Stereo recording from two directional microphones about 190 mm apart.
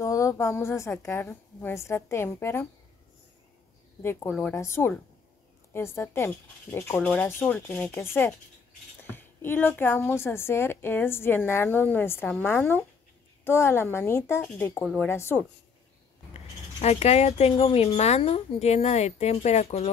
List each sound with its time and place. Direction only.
0.0 s a woman's voice: 15° left (ahead or behind)
4.0 s a woman's voice: 10° left (ahead or behind)
16.8 s speech: 35° left (ahead or behind)